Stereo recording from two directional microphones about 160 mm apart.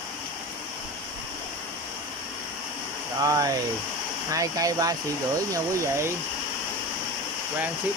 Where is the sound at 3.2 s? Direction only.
25° right (ahead or behind).